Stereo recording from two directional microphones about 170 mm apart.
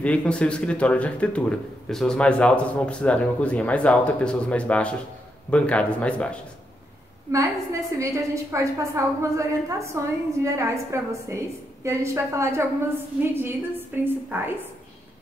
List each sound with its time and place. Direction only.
0.0 s a man's voice: 5° left (ahead or behind)
7.9 s a woman's voice: 15° right (ahead or behind)